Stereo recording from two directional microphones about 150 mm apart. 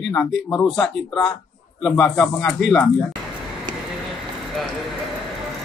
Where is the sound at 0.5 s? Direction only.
5° left (ahead or behind).